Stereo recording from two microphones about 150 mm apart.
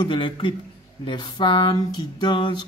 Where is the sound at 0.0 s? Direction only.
30° left (ahead or behind).